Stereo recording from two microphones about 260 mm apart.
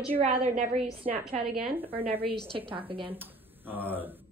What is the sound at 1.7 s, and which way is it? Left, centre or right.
Speech, centre.